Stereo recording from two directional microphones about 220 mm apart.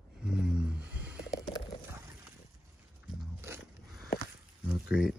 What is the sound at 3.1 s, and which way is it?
Biting, 5° right (ahead or behind).